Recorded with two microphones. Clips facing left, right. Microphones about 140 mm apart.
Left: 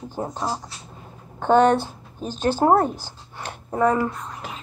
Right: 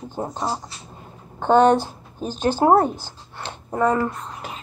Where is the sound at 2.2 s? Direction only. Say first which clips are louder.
Right 1 dB; 5° right (ahead or behind).